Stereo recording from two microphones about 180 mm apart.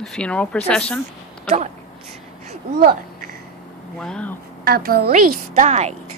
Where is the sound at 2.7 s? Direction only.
60° right (ahead or behind).